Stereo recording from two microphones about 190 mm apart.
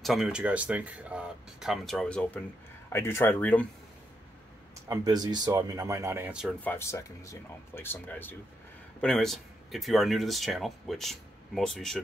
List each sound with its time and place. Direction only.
0.0 s speech: centre (ahead or behind)
4.8 s speech: 20° right (ahead or behind)
6.6 s speech: 10° left (ahead or behind)